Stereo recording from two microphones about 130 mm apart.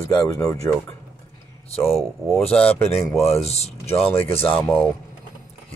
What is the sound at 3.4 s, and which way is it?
Speech, 55° left (ahead or behind).